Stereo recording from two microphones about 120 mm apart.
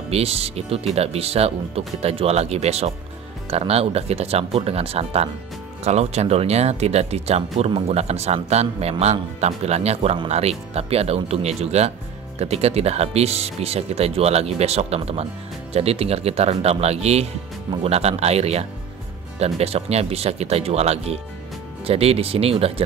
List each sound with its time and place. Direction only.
0.1 s speech: 55° right (ahead or behind)